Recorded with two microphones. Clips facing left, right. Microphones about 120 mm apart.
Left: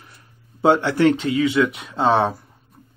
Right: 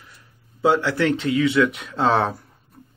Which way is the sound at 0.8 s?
20° left (ahead or behind).